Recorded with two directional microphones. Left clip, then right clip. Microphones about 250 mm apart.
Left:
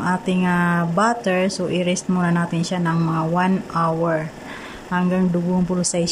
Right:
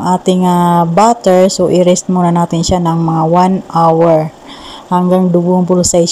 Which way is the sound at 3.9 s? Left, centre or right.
Centre.